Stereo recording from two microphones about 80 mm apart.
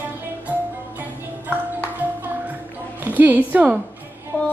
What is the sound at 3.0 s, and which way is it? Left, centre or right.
Speech, right.